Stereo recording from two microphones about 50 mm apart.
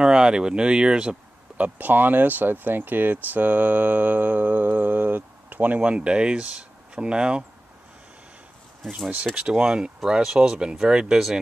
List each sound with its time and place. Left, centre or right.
0.0 s speech: centre
1.6 s speech: right
5.8 s speech: right
9.3 s speech: centre